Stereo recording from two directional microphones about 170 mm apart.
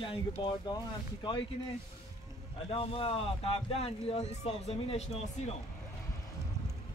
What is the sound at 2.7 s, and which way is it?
Speech, 35° left (ahead or behind).